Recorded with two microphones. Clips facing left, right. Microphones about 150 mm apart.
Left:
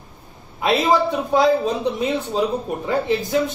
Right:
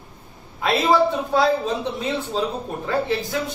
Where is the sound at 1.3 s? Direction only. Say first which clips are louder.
Left 5 dB; 15° left (ahead or behind).